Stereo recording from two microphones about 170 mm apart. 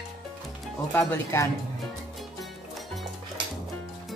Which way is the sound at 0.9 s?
15° left (ahead or behind).